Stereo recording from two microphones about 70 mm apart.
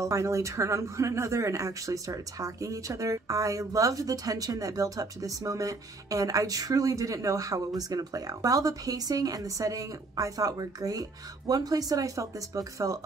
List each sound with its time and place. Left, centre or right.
0.0 s speech: right